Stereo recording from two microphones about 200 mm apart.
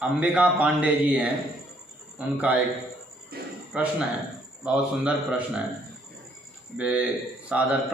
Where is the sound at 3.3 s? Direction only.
50° right (ahead or behind).